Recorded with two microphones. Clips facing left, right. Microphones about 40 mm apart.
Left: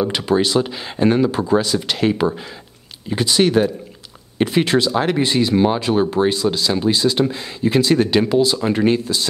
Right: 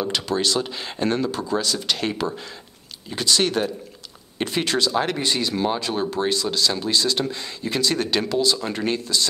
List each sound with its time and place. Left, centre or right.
0.0 s speech: centre